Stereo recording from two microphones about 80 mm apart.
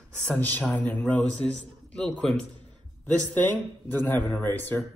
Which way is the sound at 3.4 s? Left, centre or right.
Left.